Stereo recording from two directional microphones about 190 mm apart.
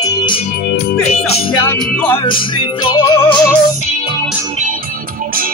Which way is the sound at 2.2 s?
25° left (ahead or behind).